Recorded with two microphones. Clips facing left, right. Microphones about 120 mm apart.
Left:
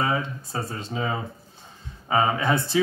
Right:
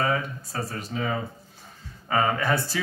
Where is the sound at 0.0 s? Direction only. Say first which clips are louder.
Even; 20° left (ahead or behind).